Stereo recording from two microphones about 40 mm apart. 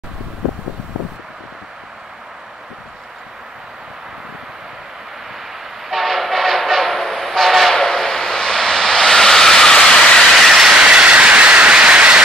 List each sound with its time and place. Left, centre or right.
5.9 s train: centre
7.7 s a sound: centre
10.5 s train: centre